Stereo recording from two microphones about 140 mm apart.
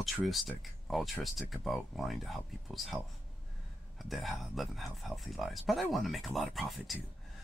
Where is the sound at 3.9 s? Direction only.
Centre (ahead or behind).